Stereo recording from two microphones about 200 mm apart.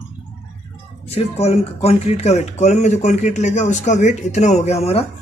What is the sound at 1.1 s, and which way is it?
Speech, 30° left (ahead or behind).